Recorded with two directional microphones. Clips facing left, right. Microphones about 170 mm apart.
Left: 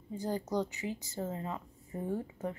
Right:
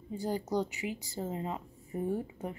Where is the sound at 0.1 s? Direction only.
10° right (ahead or behind).